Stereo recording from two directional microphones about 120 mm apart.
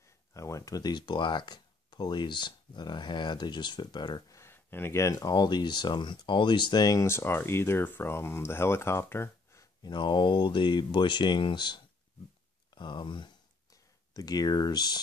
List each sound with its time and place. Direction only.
0.3 s speech: 25° left (ahead or behind)
4.4 s speech: 20° left (ahead or behind)
9.8 s speech: 40° left (ahead or behind)